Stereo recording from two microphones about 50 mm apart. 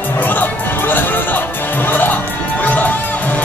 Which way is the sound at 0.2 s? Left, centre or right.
Left.